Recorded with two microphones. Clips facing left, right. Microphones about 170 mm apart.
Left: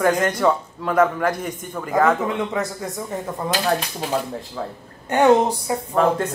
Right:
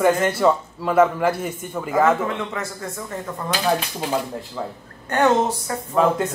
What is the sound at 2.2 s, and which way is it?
Speech, 15° left (ahead or behind).